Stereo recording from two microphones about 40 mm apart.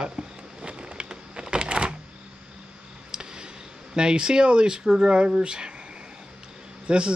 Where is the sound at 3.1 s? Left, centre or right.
Right.